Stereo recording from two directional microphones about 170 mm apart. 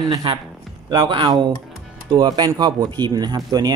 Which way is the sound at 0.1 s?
25° right (ahead or behind).